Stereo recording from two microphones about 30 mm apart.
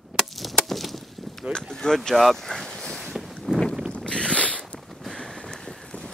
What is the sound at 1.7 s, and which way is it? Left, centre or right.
Speech, left.